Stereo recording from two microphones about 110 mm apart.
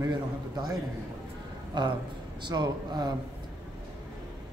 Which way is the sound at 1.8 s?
45° right (ahead or behind).